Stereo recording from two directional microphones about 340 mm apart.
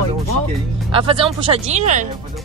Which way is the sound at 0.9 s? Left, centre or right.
Centre.